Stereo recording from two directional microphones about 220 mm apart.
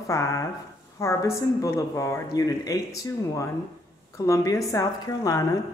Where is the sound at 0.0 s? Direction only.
15° left (ahead or behind).